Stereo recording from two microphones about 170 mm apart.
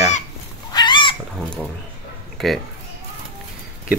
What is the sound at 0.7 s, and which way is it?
Pig, 25° left (ahead or behind).